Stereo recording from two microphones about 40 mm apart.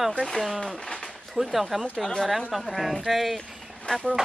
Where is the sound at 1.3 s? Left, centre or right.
Centre.